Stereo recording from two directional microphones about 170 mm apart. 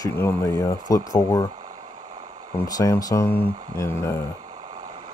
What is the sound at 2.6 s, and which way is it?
Speech, 20° left (ahead or behind).